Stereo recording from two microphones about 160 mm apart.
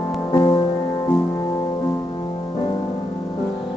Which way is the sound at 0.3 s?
25° left (ahead or behind).